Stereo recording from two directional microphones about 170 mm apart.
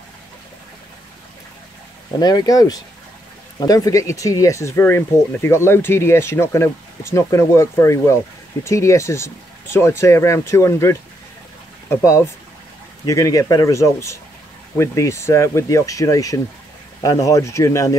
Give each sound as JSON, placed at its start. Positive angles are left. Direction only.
{"t": 2.1, "sound": "speech", "side_deg": 25}